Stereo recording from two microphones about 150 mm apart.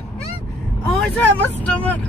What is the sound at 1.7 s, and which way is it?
Speech, 10° left (ahead or behind).